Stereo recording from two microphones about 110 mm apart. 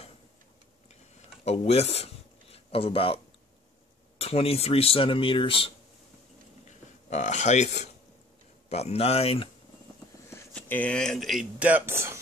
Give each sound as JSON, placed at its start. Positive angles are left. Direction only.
{"t": 1.4, "sound": "speech", "side_deg": 70}
{"t": 2.5, "sound": "speech", "side_deg": 60}
{"t": 4.2, "sound": "speech", "side_deg": 65}
{"t": 7.1, "sound": "speech", "side_deg": 90}
{"t": 8.6, "sound": "speech", "side_deg": 80}
{"t": 10.5, "sound": "speech", "side_deg": 10}
{"t": 11.6, "sound": "speech", "side_deg": -20}